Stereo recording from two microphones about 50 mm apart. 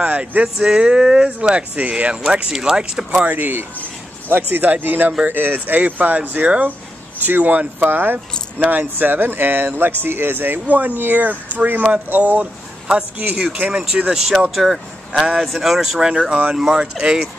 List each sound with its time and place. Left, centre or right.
0.0 s speech: right
0.6 s speech: centre
2.5 s speech: centre
3.3 s speech: right
13.7 s speech: centre
14.1 s speech: centre
16.0 s speech: centre